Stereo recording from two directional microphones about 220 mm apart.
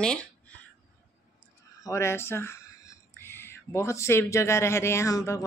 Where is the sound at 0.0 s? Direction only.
5° left (ahead or behind).